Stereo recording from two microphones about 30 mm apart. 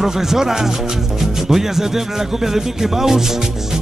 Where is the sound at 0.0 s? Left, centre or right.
Centre.